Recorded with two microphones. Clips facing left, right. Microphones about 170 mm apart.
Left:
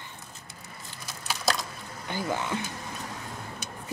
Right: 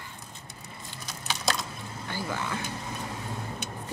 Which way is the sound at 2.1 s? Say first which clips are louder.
Left 3 dB; 20° left (ahead or behind).